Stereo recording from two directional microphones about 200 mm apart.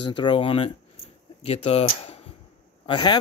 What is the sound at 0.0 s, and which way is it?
Speech, 25° left (ahead or behind).